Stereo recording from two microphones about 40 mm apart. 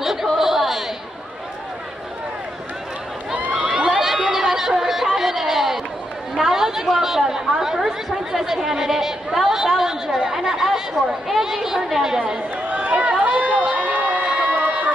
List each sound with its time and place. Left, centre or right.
0.0 s a sound: centre
3.5 s crowd: centre
4.3 s chatter: centre
5.1 s a sound: centre
6.3 s chatter: centre
11.2 s a woman's voice: centre
12.6 s run: right
13.7 s crowd: right
14.4 s music: right